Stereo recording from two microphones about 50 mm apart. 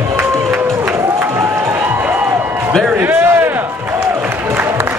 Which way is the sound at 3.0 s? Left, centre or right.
Right.